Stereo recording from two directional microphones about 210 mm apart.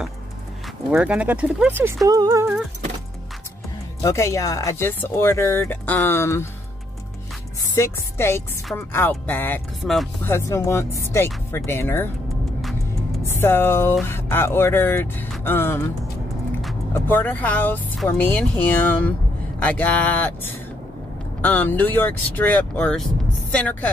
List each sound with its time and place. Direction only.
0.9 s speech: 5° right (ahead or behind)
4.0 s speech: 15° left (ahead or behind)
7.7 s speech: 15° left (ahead or behind)
13.3 s speech: 10° left (ahead or behind)
16.9 s speech: 10° left (ahead or behind)
21.4 s speech: 10° left (ahead or behind)